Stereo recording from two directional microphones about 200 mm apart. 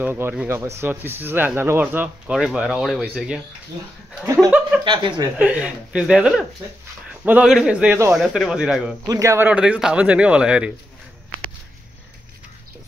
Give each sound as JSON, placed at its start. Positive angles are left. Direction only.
{"t": 0.0, "sound": "speech", "side_deg": -10}
{"t": 4.4, "sound": "chuckle", "side_deg": 0}
{"t": 4.8, "sound": "speech", "side_deg": -25}
{"t": 5.4, "sound": "a man's voice", "side_deg": -5}
{"t": 9.0, "sound": "speech", "side_deg": -15}